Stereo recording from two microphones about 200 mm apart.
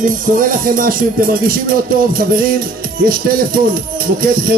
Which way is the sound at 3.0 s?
45° right (ahead or behind).